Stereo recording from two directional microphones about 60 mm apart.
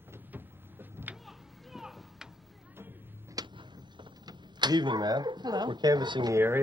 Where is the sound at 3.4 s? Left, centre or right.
Right.